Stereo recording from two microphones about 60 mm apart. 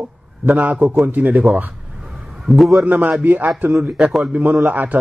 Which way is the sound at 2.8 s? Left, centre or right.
Right.